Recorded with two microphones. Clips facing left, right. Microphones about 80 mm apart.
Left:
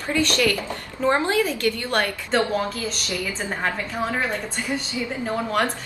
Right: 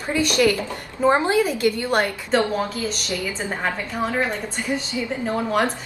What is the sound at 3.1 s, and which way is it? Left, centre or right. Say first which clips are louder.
Speech: right 1 dB; right.